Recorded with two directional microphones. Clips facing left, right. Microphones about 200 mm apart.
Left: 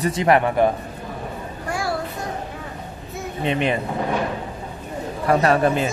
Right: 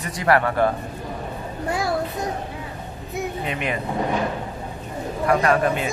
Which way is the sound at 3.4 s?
30° left (ahead or behind).